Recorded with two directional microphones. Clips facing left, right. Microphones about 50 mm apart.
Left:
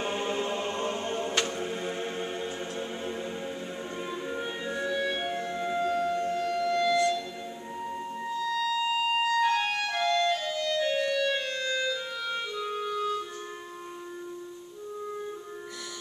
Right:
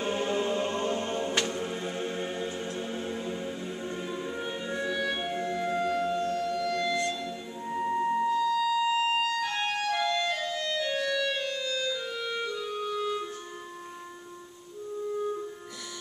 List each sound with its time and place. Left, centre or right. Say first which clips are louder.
0.0 s chant: right 1 dB; centre
1.4 s music: even; centre
6.1 s music: even; centre
6.8 s music: left 4 dB; centre
7.8 s music: right 9 dB; right
8.2 s music: right 4 dB; centre
9.4 s music: left 4 dB; centre
10.0 s music: left 3 dB; centre
10.8 s music: left 2 dB; centre
12.2 s clarinet: even; centre